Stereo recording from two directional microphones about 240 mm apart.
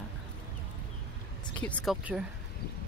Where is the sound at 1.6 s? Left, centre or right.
Centre.